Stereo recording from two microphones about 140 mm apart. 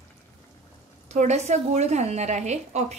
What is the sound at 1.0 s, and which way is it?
A woman's voice, 55° right (ahead or behind).